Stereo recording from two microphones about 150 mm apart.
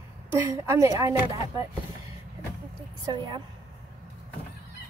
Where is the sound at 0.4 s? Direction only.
20° right (ahead or behind).